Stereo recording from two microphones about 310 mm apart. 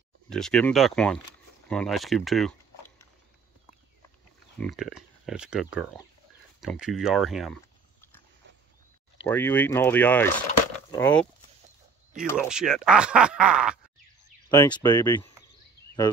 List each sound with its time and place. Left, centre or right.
0.3 s speech: centre
4.6 s speech: centre
9.3 s speech: centre
12.3 s speech: centre
14.5 s speech: centre